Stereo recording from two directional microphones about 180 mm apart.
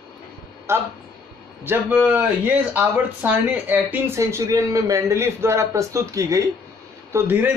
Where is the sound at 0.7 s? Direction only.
15° right (ahead or behind).